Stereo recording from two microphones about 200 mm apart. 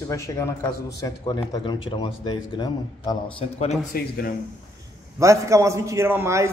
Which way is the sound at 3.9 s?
50° left (ahead or behind).